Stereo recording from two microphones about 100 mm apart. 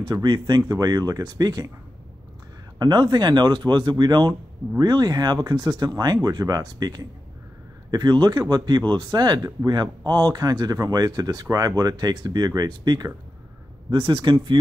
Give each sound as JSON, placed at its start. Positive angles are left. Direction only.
{"t": 0.0, "sound": "speech", "side_deg": -45}
{"t": 2.8, "sound": "speech", "side_deg": -50}